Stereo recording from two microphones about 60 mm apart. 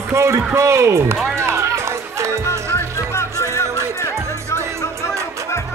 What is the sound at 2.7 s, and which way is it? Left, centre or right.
Music, left.